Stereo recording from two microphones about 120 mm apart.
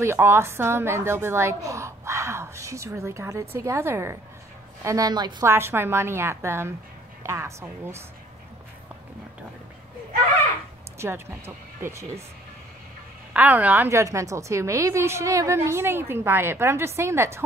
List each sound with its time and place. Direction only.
0.0 s a woman's voice: 20° right (ahead or behind)
5.4 s a woman's voice: 20° right (ahead or behind)
11.0 s a woman's voice: 20° right (ahead or behind)
13.3 s a woman's voice: 15° right (ahead or behind)